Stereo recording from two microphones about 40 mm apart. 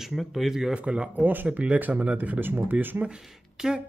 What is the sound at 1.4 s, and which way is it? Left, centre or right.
Speech, right.